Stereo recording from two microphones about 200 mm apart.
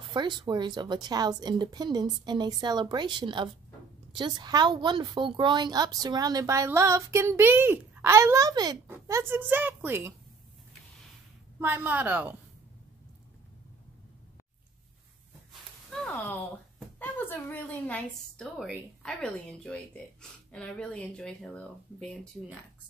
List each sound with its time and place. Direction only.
0.1 s a woman's voice: 20° right (ahead or behind)
11.6 s a woman's voice: 10° right (ahead or behind)
17.0 s a woman's voice: 10° left (ahead or behind)